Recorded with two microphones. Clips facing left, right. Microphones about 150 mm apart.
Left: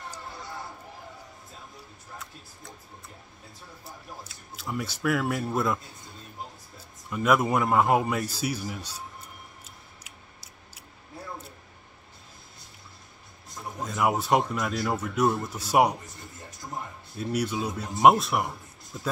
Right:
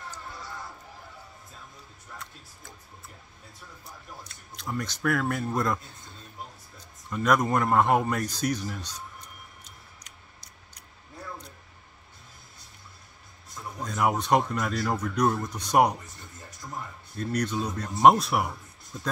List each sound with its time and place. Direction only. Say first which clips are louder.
4.3 s speech: even; 5° left (ahead or behind)
7.1 s speech: left 1 dB; 5° left (ahead or behind)
10.0 s a sound: left 2 dB; 5° left (ahead or behind)
13.8 s speech: even; centre (ahead or behind)
17.2 s speech: even; 10° left (ahead or behind)